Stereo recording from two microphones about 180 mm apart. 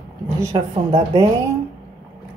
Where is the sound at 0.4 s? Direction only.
20° right (ahead or behind).